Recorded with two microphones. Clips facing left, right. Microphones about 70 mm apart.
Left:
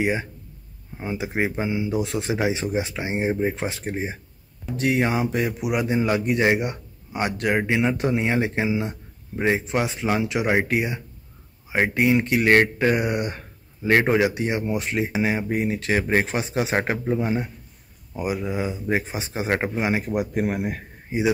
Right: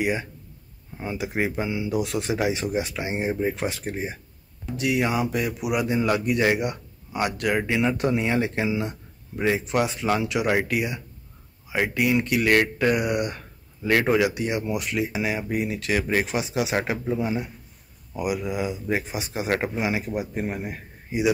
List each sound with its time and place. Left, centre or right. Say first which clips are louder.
0.0 s speech: left 2 dB; left
20.2 s speech: left 4 dB; left